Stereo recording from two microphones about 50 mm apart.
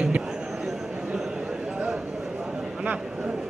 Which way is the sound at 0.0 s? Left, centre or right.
Centre.